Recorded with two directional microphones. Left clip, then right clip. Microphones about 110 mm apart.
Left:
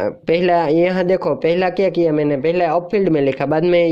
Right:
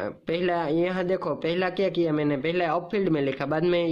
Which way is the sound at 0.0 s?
45° left (ahead or behind).